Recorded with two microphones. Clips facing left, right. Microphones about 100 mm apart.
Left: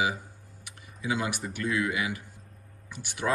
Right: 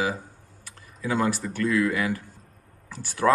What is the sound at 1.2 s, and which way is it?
Speech, 15° left (ahead or behind).